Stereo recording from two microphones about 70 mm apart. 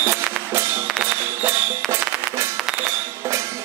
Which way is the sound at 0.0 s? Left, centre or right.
Right.